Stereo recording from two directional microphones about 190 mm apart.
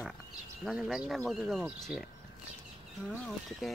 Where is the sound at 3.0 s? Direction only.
Centre (ahead or behind).